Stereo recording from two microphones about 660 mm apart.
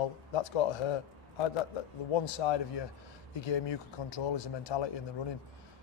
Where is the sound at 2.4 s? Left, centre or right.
Left.